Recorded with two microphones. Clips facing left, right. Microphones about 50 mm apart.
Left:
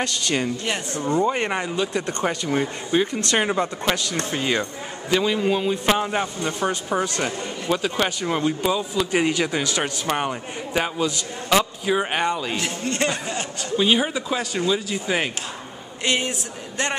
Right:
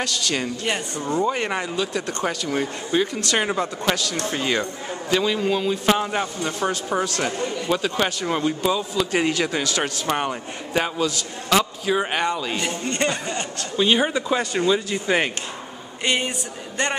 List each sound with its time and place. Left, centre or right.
0.4 s speech: centre
1.2 s speech: centre
3.8 s speech: left
4.3 s speech: centre
9.6 s speech: centre
10.0 s speech: centre
12.5 s speech: centre
16.0 s a sound: centre